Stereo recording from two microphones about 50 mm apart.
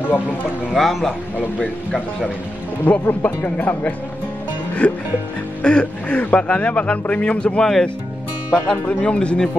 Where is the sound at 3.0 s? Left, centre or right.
Left.